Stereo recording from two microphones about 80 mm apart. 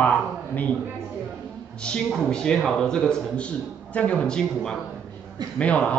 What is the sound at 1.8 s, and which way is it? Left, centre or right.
Speech, centre.